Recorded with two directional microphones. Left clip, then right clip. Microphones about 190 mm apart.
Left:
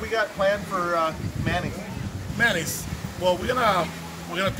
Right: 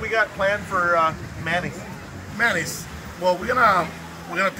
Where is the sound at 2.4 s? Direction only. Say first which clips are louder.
Right 1 dB; 15° left (ahead or behind).